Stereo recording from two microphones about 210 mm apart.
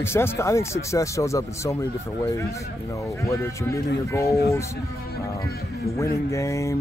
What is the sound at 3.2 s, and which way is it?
Speech, 15° left (ahead or behind).